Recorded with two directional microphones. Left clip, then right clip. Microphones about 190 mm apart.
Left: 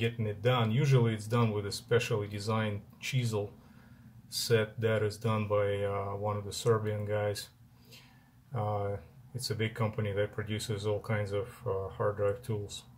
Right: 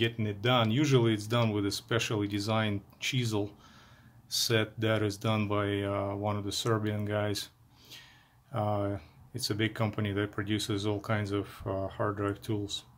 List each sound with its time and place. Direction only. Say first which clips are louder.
0.0 s speech: right 1 dB; 65° right (ahead or behind)
8.5 s speech: right 3 dB; 70° right (ahead or behind)